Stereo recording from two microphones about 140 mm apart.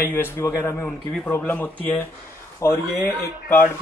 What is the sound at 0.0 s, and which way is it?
Speech, 15° left (ahead or behind).